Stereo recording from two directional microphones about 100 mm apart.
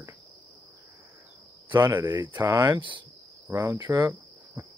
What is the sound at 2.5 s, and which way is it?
Speech, 30° right (ahead or behind).